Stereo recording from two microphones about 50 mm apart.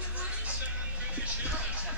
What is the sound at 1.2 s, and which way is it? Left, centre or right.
Music, right.